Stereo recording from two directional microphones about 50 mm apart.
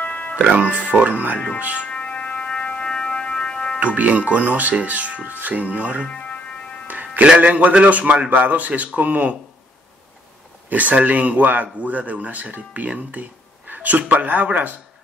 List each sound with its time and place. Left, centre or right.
0.0 s music: left
0.6 s speech: right
1.8 s music: left
3.8 s speech: right
6.0 s music: left
6.9 s a man's voice: right
10.7 s speech: right